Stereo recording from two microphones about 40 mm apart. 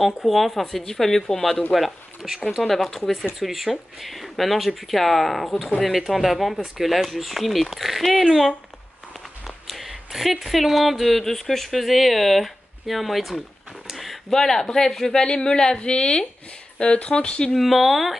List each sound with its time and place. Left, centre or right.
0.0 s speech: centre
9.7 s a sound: centre
10.5 s speech: centre
14.3 s speech: centre
15.1 s a woman's voice: centre
17.6 s speech: centre